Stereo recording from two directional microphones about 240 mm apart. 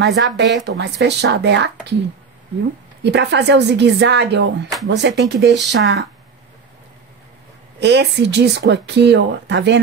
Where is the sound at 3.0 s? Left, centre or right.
Right.